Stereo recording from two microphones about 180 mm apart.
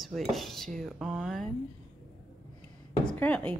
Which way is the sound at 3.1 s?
5° left (ahead or behind).